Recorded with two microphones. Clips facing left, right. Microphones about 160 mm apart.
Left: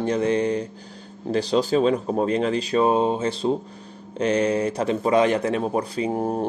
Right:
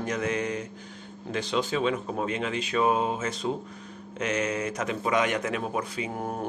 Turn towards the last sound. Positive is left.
turn(degrees=35)  # may be behind; listen again after turning